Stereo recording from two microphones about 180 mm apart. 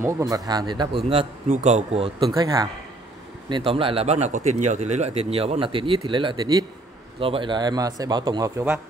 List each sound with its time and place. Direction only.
0.0 s speech: 20° right (ahead or behind)
1.5 s speech: 40° right (ahead or behind); by 8.6 s 20° right (ahead or behind)